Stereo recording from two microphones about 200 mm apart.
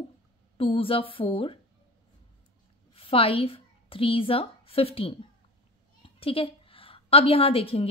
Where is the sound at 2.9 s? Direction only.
25° left (ahead or behind).